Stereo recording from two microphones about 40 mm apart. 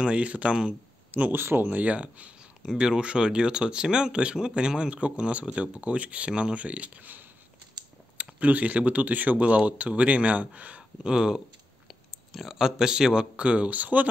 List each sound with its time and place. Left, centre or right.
0.0 s speech: right
1.3 s speech: right
1.7 s speech: right
2.6 s speech: centre; by 6.9 s right
8.2 s speech: right
11.1 s speech: centre
12.3 s speech: centre; by 14.0 s right